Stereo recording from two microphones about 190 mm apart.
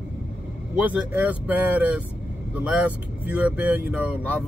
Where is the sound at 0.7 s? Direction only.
10° right (ahead or behind).